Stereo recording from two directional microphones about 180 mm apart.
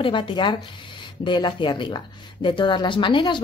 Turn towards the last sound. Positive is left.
turn(degrees=25)  # may be behind; listen again after turning